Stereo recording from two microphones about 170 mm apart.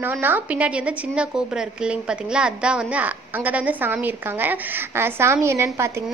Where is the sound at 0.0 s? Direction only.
10° right (ahead or behind).